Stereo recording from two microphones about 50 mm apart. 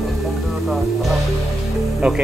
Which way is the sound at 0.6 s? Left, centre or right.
Centre.